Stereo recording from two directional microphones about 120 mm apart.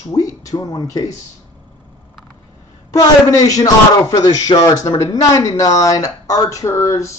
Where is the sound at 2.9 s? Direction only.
30° left (ahead or behind).